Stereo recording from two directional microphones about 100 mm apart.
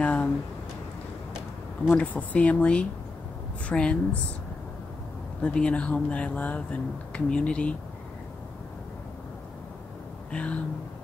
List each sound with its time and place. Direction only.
0.0 s speech: 15° left (ahead or behind)
2.0 s speech: 15° left (ahead or behind)
5.4 s speech: 10° left (ahead or behind)
10.3 s speech: 15° left (ahead or behind)